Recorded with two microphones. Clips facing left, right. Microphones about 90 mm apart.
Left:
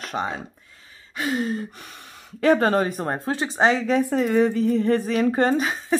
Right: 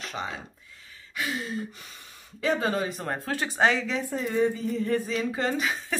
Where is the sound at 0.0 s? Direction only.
45° left (ahead or behind).